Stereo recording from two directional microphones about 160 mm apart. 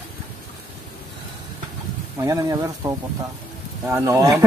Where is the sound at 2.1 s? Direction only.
20° right (ahead or behind).